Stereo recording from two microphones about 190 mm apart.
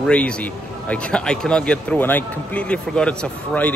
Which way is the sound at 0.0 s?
5° left (ahead or behind).